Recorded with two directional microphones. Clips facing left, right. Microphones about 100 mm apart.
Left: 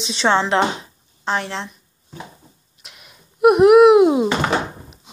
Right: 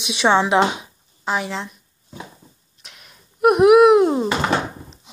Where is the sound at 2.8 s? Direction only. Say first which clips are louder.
Left 1 dB; centre (ahead or behind).